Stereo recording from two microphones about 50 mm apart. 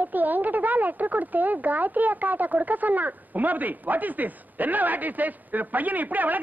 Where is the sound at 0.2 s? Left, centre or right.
Right.